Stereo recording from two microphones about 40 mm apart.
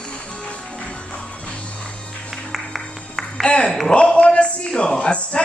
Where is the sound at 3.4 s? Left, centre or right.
Left.